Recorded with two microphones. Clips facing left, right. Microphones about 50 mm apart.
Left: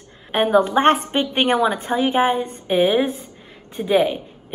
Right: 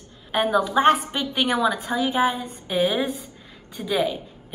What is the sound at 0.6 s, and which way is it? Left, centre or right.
A woman's voice, left.